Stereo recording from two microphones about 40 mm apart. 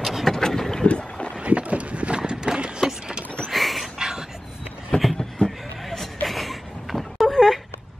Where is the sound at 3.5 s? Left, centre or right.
Centre.